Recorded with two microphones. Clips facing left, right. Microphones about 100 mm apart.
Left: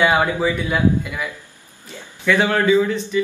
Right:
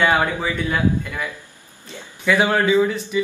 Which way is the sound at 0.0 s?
15° left (ahead or behind).